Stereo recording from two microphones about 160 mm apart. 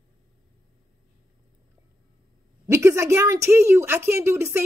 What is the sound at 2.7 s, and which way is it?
A woman's voice, 20° right (ahead or behind).